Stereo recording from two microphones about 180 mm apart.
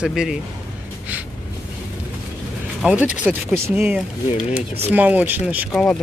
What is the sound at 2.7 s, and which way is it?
Speech, 5° right (ahead or behind).